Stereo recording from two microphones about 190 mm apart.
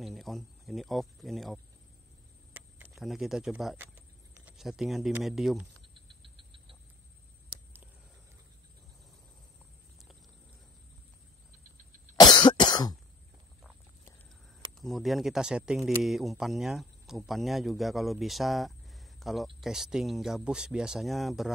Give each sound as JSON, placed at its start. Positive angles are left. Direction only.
{"t": 0.0, "sound": "speech", "side_deg": 0}
{"t": 2.5, "sound": "a sound", "side_deg": -5}
{"t": 4.5, "sound": "speech", "side_deg": 0}
{"t": 5.9, "sound": "a sound", "side_deg": -25}
{"t": 12.2, "sound": "cough", "side_deg": 25}
{"t": 14.8, "sound": "speech", "side_deg": 0}